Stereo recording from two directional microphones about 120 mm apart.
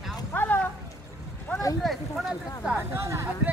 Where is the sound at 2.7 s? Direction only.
20° right (ahead or behind).